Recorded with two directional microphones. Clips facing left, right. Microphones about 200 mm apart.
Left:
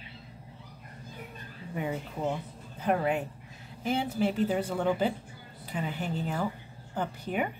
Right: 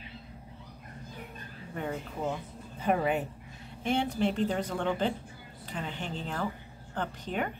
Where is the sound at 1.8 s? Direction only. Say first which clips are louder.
Left 2 dB; 10° left (ahead or behind).